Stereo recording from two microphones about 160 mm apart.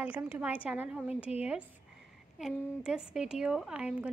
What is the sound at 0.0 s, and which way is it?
A woman's voice, 10° right (ahead or behind).